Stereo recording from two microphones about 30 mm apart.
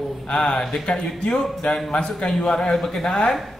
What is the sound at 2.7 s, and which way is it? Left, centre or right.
Speech, centre.